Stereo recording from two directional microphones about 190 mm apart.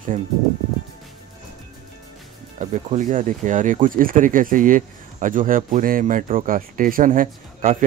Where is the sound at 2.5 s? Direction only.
40° right (ahead or behind).